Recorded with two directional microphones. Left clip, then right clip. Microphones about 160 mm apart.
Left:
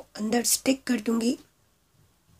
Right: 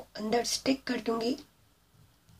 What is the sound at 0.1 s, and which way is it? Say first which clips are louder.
Speech: left 3 dB; 45° left (ahead or behind).